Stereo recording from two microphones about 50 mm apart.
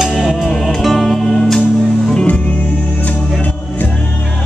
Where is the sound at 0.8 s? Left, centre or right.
Centre.